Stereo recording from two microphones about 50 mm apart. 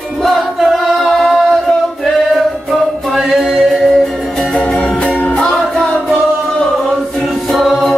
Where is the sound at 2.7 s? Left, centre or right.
Centre.